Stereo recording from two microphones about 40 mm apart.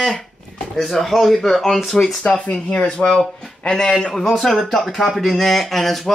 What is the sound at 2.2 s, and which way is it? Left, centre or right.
A man's voice, left.